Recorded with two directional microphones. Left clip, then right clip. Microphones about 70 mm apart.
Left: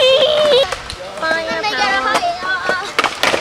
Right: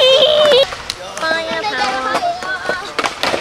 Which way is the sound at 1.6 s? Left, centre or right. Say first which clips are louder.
Left 2 dB; left.